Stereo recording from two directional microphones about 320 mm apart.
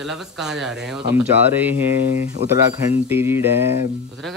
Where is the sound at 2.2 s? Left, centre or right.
Centre.